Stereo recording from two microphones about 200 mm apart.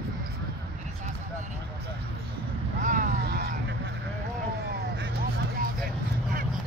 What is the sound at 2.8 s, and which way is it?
Vehicle, 40° right (ahead or behind).